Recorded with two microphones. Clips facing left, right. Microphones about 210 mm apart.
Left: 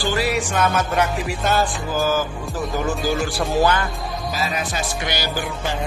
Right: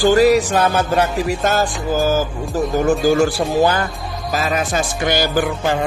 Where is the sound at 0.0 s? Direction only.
45° right (ahead or behind).